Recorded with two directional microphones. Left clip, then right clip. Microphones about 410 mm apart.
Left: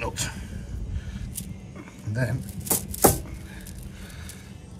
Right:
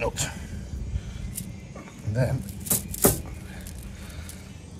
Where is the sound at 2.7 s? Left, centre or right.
Centre.